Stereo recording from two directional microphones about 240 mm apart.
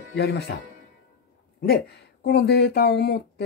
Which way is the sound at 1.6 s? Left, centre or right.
Left.